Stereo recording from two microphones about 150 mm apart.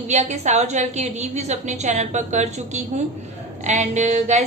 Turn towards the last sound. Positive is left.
turn(degrees=-50)  # may be behind; listen again after turning